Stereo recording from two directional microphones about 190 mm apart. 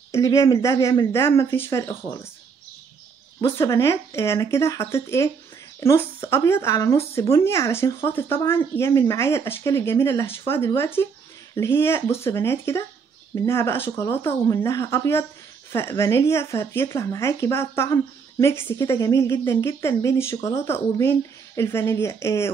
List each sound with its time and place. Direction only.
0.1 s speech: 15° left (ahead or behind)
3.3 s speech: 15° left (ahead or behind)